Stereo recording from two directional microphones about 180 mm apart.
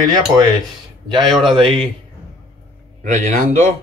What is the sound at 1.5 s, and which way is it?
Speech, 30° right (ahead or behind).